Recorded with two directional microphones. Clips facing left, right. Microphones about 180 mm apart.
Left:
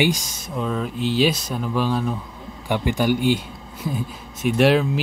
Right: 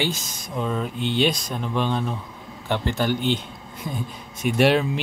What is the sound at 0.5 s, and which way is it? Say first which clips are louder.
Speech: left 1 dB; centre (ahead or behind).